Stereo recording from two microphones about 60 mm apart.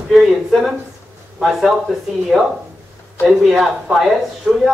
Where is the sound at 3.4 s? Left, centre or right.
Centre.